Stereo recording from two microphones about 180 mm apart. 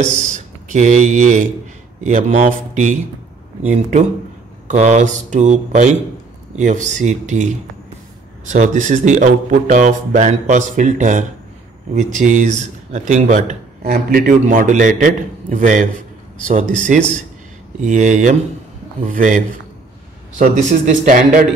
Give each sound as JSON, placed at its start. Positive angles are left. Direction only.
{"t": 0.7, "sound": "a man's voice", "side_deg": -40}
{"t": 13.8, "sound": "a man's voice", "side_deg": -60}